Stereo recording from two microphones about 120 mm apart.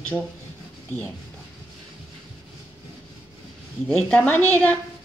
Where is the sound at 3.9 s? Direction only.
10° left (ahead or behind).